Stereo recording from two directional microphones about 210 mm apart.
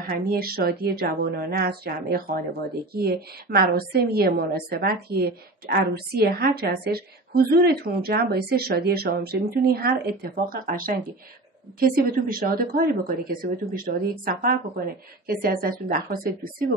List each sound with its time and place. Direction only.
0.1 s a woman's voice: 45° right (ahead or behind)